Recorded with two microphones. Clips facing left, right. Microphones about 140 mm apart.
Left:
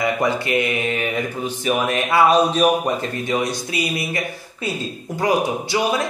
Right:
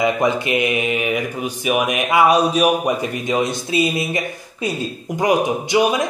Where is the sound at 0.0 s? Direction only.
20° right (ahead or behind).